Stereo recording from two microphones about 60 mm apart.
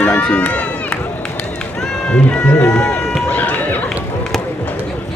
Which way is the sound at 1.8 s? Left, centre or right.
Centre.